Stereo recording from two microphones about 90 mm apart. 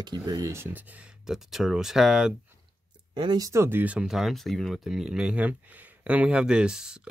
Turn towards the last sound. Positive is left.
turn(degrees=-10)  # may be behind; listen again after turning